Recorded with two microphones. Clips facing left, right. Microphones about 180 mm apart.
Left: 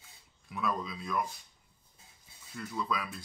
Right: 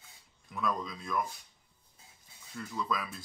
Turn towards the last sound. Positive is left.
turn(degrees=0)  # may be behind; listen again after turning